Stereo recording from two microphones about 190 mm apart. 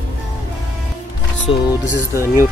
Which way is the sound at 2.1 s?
15° right (ahead or behind).